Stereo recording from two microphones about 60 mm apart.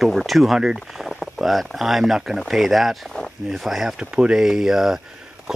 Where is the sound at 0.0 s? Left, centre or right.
Centre.